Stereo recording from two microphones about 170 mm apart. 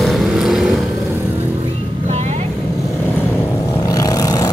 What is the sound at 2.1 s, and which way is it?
Vehicle, 40° right (ahead or behind).